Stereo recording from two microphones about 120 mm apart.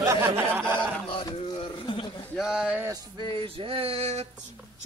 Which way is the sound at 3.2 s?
50° right (ahead or behind).